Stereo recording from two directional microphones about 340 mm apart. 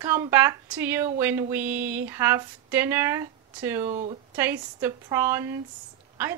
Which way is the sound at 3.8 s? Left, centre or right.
Centre.